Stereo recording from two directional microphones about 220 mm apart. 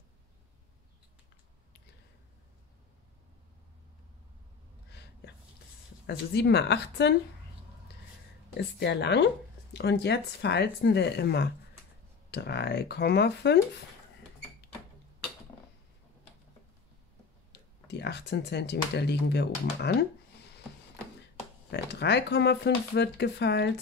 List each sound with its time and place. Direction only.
6.0 s speech: 50° left (ahead or behind)
8.5 s speech: 50° left (ahead or behind)
17.5 s speech: 50° left (ahead or behind)
21.6 s speech: 50° left (ahead or behind)